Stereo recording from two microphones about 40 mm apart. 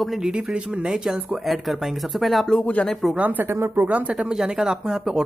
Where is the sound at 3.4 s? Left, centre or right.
Right.